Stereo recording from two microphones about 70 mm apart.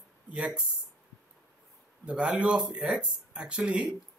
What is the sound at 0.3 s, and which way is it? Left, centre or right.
Speech, centre.